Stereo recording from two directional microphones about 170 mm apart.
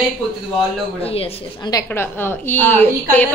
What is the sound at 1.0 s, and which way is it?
Speech, 35° left (ahead or behind).